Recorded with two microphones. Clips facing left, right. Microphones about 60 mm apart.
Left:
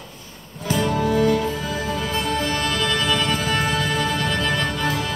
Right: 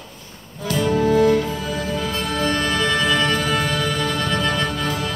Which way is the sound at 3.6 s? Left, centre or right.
Centre.